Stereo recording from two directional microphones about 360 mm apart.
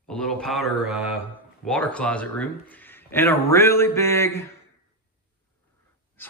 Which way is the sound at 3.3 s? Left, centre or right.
Centre.